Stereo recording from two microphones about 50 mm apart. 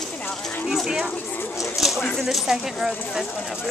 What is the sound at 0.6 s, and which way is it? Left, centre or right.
Speech, centre.